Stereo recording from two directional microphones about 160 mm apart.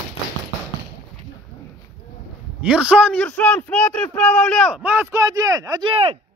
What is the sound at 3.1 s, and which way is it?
Speech, 10° left (ahead or behind).